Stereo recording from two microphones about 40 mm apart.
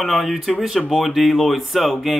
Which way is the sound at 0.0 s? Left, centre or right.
Centre.